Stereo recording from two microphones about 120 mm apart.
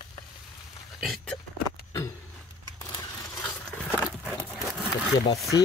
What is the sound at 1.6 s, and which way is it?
Vehicle, 25° left (ahead or behind).